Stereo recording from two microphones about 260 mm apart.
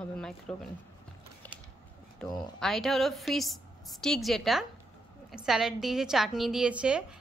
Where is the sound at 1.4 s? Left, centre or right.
Centre.